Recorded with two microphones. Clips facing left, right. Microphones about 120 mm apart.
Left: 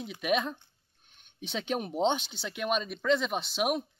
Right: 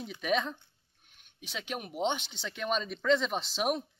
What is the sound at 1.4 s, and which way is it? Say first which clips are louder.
Speech: left 6 dB; 30° left (ahead or behind).